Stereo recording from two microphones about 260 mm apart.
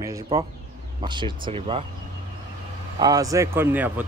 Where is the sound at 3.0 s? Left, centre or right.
Centre.